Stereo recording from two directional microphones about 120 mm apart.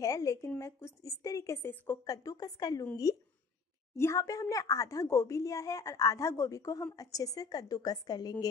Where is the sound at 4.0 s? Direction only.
25° left (ahead or behind).